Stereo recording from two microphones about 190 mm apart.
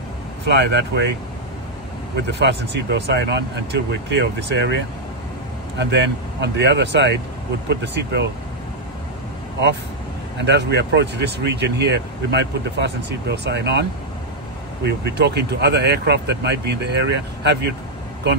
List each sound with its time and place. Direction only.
0.5 s speech: 60° right (ahead or behind)
2.2 s speech: 65° right (ahead or behind)
5.8 s speech: 65° right (ahead or behind)
10.4 s speech: 65° right (ahead or behind)
14.9 s speech: 60° right (ahead or behind)